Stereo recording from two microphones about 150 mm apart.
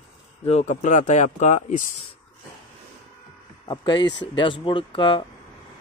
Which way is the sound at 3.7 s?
30° left (ahead or behind).